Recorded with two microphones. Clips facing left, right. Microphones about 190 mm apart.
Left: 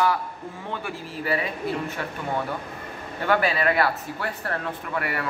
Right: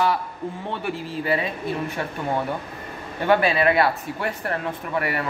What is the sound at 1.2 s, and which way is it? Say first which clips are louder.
Speech: right 2 dB; 20° right (ahead or behind).